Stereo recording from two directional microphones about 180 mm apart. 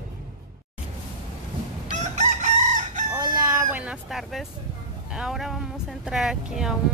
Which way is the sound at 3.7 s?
5° right (ahead or behind).